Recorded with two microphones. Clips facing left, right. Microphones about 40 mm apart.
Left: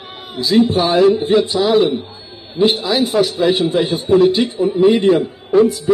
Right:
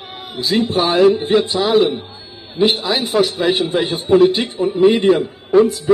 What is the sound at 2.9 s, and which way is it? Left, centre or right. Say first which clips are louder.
A man's voice: left 1 dB; right.